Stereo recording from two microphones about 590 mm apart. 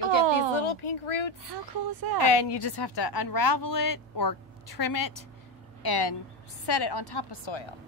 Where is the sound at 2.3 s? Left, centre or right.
Left.